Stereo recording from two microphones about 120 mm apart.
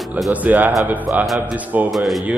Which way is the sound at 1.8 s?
Centre (ahead or behind).